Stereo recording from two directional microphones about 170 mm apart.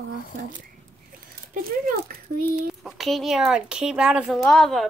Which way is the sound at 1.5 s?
55° right (ahead or behind).